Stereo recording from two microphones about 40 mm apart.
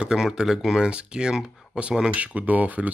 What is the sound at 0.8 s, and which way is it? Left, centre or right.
Speech, right.